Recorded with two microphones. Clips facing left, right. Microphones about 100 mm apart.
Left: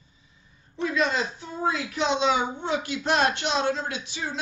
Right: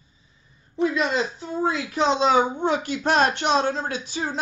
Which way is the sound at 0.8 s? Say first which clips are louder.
Right 3 dB; 25° right (ahead or behind).